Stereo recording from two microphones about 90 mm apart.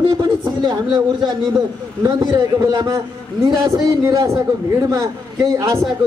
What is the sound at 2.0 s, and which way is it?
A man's voice, 45° right (ahead or behind).